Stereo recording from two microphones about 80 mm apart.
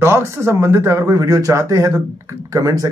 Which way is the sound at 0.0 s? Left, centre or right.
Right.